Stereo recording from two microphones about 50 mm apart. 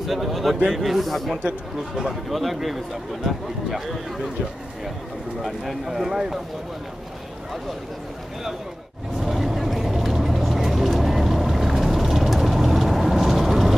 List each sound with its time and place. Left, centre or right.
0.0 s speech: centre
2.0 s speech: centre
5.4 s speech: centre
9.2 s vehicle: centre